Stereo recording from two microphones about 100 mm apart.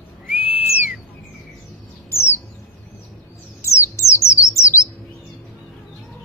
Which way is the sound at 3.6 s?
30° left (ahead or behind).